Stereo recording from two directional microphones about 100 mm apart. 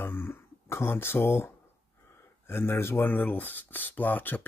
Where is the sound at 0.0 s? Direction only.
25° left (ahead or behind).